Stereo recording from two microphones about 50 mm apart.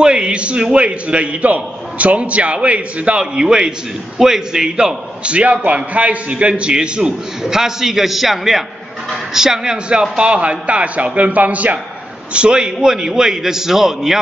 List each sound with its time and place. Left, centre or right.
0.0 s a man's voice: centre
10.1 s a man's voice: right
12.3 s a man's voice: right